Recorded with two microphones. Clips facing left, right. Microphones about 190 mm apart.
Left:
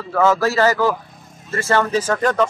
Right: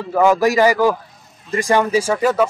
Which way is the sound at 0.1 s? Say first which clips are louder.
Right 2 dB; 15° right (ahead or behind).